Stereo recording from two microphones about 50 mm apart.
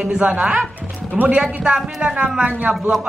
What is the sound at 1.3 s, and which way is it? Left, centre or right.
A woman's voice, centre.